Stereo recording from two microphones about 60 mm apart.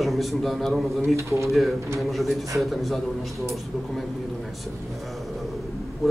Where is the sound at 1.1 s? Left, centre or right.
Right.